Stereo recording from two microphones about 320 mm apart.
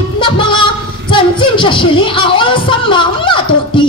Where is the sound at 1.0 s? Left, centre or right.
Centre.